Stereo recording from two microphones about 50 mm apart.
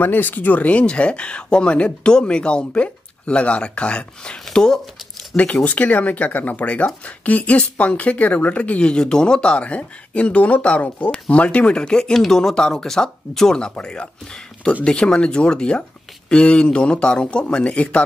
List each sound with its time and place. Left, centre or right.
0.0 s speech: left; by 4.7 s centre
5.3 s speech: left